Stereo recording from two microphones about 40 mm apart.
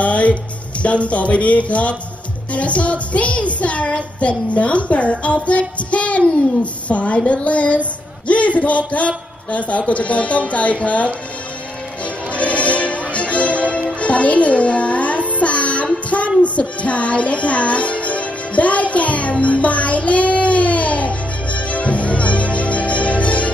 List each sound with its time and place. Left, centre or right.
0.0 s music: left
0.8 s speech: left
12.0 s music: left